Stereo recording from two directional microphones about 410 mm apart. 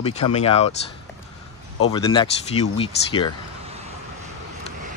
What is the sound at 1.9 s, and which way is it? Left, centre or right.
A man's voice, centre.